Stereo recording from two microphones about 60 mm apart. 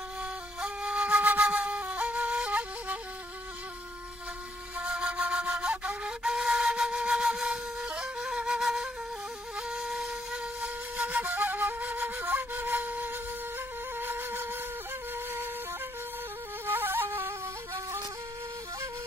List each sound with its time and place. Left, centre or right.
0.2 s flute: centre
4.7 s flute: centre
13.9 s wind instrument: right
15.1 s flute: right
16.6 s music: right